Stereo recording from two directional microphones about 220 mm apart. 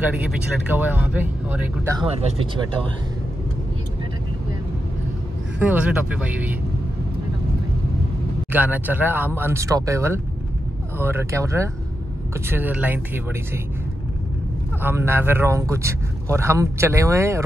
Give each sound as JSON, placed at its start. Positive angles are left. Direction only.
{"t": 0.7, "sound": "speech", "side_deg": -10}
{"t": 2.0, "sound": "speech", "side_deg": -25}
{"t": 5.6, "sound": "speech", "side_deg": -5}
{"t": 8.5, "sound": "speech", "side_deg": -10}
{"t": 14.8, "sound": "speech", "side_deg": -10}